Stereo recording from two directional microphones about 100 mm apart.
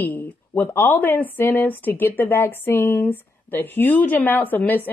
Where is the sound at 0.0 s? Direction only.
20° left (ahead or behind).